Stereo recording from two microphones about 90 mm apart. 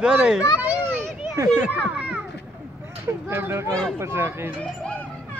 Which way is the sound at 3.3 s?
25° right (ahead or behind).